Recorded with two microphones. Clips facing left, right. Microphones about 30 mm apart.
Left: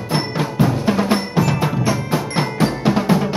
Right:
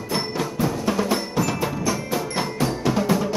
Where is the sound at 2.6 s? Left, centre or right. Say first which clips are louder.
Left 4 dB; left.